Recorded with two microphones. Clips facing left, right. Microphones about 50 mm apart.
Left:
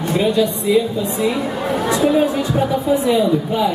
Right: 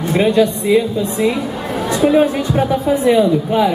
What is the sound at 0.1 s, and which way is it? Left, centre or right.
Speech, right.